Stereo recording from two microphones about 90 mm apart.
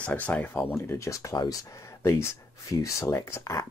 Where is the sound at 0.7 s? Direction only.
30° left (ahead or behind).